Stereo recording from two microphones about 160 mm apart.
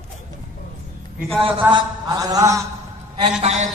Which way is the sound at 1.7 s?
20° right (ahead or behind).